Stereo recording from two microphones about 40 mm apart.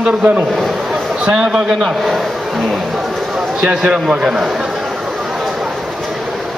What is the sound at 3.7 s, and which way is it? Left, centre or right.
Speech, right.